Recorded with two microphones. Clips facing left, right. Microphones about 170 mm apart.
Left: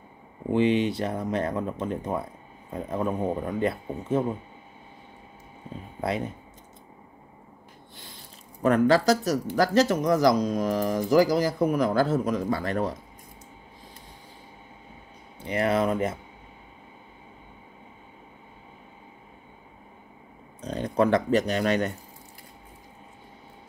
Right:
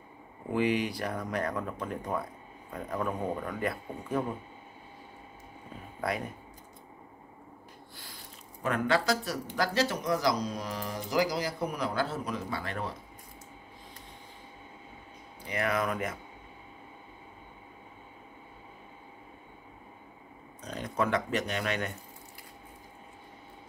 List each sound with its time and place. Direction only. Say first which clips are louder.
0.5 s speech: left 6 dB; 25° left (ahead or behind)
5.9 s speech: left 4 dB; 25° left (ahead or behind)
8.6 s speech: left 8 dB; 40° left (ahead or behind)
15.4 s speech: left 6 dB; 30° left (ahead or behind)
20.6 s speech: left 8 dB; 30° left (ahead or behind)